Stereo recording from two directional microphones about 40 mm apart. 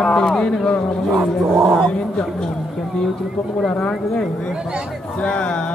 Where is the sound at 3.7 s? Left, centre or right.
Centre.